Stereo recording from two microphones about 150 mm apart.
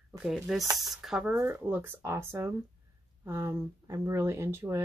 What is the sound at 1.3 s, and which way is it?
Speech, 15° right (ahead or behind).